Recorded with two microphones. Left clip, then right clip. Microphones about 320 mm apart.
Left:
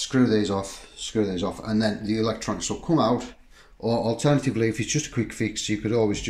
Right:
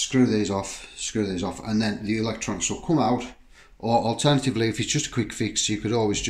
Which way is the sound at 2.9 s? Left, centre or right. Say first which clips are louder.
Left 1 dB; centre.